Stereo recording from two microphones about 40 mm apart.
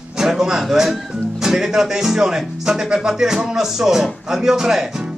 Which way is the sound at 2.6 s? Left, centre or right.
Centre.